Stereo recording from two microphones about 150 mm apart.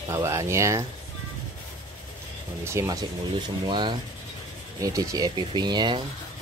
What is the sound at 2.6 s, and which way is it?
Speech, 20° right (ahead or behind).